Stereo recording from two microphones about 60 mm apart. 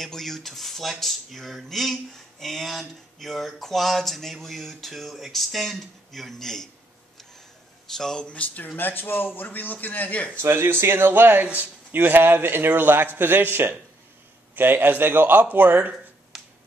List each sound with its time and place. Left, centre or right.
0.0 s speech: centre
7.9 s speech: centre
8.3 s a man's voice: left
10.4 s a man's voice: right
15.9 s a sound: centre